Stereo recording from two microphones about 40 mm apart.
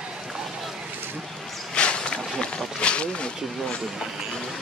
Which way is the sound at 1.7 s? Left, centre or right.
Left.